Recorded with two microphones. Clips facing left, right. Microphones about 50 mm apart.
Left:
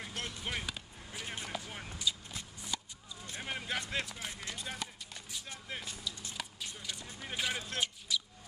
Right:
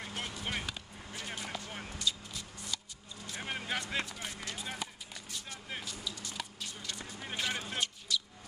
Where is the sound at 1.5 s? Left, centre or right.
Centre.